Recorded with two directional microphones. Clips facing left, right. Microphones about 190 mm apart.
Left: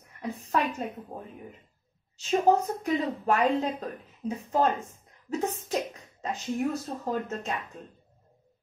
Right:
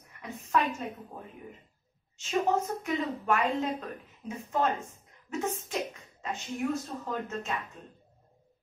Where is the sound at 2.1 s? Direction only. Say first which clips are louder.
Left 5 dB; 35° left (ahead or behind).